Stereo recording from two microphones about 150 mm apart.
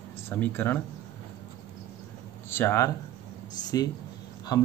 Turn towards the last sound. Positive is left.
turn(degrees=25)  # may be behind; listen again after turning